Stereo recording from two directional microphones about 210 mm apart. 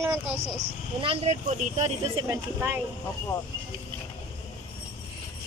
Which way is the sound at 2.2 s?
10° right (ahead or behind).